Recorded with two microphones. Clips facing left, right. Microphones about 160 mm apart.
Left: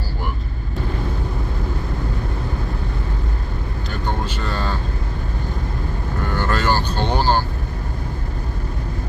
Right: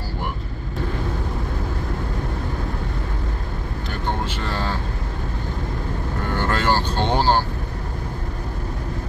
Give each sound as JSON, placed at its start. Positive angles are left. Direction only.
{"t": 6.3, "sound": "vehicle", "side_deg": -25}